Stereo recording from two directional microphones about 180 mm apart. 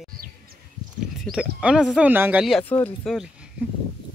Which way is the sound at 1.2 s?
5° right (ahead or behind).